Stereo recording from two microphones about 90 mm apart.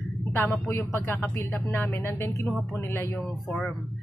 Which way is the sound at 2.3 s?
Centre (ahead or behind).